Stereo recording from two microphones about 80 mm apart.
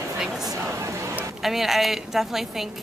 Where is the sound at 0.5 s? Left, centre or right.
Right.